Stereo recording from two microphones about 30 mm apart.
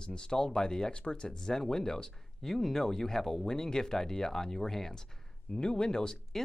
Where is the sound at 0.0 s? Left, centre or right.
Left.